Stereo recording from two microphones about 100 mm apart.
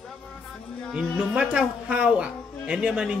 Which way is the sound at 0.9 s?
10° right (ahead or behind).